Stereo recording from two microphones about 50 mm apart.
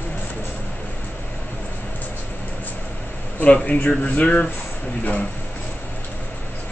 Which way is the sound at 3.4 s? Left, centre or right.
Left.